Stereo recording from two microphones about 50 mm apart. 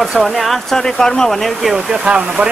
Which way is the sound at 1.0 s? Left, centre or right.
Centre.